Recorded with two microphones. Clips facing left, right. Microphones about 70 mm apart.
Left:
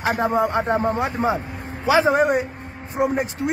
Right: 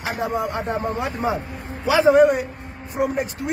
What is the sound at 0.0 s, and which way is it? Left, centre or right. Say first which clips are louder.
Speech: left 4 dB; left.